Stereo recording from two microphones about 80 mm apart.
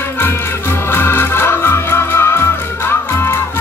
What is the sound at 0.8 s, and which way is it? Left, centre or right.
Music, left.